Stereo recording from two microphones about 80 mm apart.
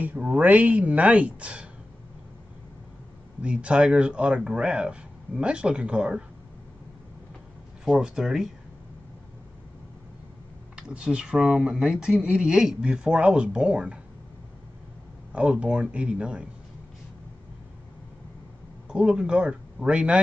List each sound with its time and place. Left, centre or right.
0.0 s speech: centre
3.4 s speech: centre
7.8 s speech: centre
10.8 s speech: centre
15.3 s speech: centre
18.9 s speech: centre